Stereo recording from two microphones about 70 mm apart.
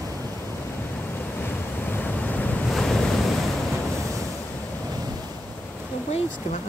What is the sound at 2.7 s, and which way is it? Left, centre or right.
Waves, centre.